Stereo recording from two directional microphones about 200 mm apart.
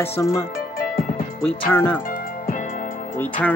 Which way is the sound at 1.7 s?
10° left (ahead or behind).